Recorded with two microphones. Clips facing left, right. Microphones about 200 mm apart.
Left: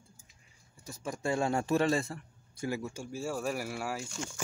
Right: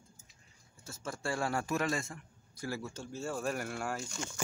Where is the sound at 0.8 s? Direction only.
15° left (ahead or behind).